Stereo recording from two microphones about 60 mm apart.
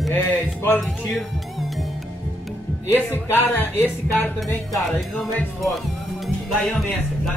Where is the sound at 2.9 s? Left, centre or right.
Left.